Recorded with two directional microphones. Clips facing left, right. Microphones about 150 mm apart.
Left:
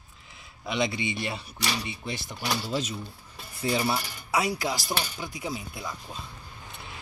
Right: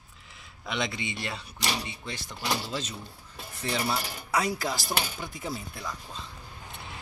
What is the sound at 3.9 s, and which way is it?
Speech, 5° left (ahead or behind).